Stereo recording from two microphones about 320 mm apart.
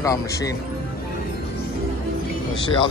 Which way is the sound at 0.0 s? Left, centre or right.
Centre.